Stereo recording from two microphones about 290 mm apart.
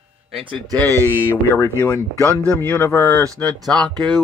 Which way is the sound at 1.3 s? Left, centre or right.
Centre.